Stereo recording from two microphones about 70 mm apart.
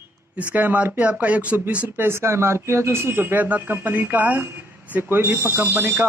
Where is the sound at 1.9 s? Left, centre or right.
Right.